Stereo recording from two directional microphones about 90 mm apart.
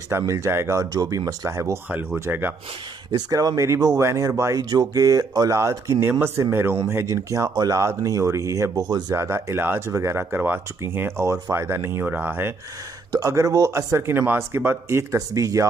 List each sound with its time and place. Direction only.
0.3 s speech: 30° right (ahead or behind)
3.1 s speech: 45° right (ahead or behind)
4.6 s speech: 50° right (ahead or behind)
5.6 s speech: 35° right (ahead or behind)
8.7 s speech: 50° right (ahead or behind)
9.1 s speech: 30° right (ahead or behind)
13.2 s speech: 35° right (ahead or behind)